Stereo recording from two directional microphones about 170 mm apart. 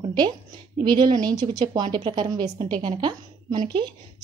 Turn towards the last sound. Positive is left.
turn(degrees=-25)  # may be behind; listen again after turning